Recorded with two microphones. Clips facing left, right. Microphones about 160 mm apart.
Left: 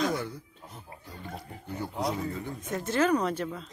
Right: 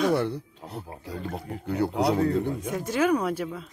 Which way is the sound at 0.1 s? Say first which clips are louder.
Right 8 dB; 70° right (ahead or behind).